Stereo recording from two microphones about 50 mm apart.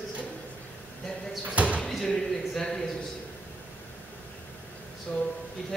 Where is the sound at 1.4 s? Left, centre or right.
Right.